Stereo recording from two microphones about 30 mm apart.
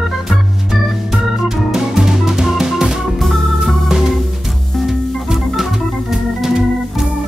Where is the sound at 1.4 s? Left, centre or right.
Centre.